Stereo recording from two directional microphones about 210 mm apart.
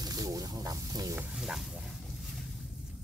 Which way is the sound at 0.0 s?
15° right (ahead or behind).